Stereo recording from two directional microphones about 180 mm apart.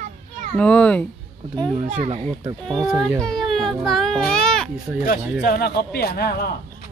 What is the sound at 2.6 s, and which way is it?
A child's voice, centre (ahead or behind).